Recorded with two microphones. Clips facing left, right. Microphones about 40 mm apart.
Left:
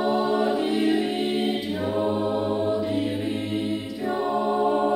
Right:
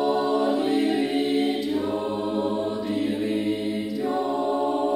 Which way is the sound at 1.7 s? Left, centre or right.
Centre.